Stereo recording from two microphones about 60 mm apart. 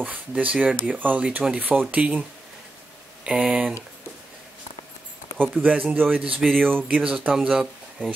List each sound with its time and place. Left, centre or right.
0.0 s speech: right
1.2 s speech: centre
3.3 s speech: centre
5.6 s speech: right
6.9 s speech: right
7.3 s speech: centre